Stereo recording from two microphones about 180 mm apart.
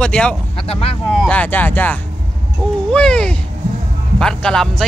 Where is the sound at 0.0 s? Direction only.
5° left (ahead or behind).